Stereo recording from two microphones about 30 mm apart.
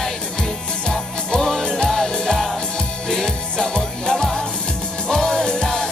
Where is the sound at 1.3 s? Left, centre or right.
Centre.